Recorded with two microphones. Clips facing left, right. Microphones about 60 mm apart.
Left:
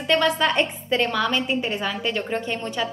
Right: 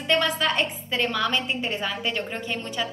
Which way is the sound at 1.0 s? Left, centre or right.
Centre.